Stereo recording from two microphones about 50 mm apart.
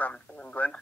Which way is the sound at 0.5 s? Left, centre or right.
Left.